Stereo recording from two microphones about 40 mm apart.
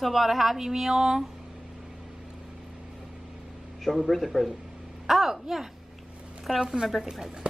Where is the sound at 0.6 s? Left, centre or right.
Centre.